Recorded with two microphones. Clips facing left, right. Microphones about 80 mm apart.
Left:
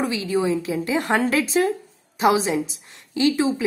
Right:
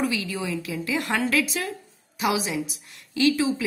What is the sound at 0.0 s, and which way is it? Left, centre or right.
A woman's voice, left.